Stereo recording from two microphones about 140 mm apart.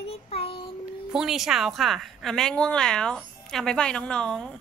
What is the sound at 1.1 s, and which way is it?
A woman's voice, 5° right (ahead or behind).